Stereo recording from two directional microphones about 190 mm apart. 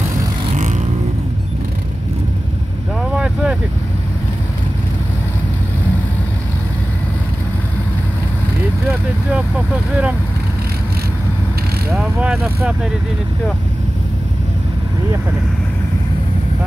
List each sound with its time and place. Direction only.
3.0 s boat: 5° right (ahead or behind)
12.0 s vehicle: 5° right (ahead or behind)